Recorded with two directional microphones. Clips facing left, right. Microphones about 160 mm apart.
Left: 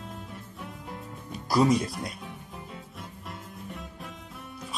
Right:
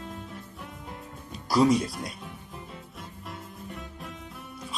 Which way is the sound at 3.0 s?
Centre (ahead or behind).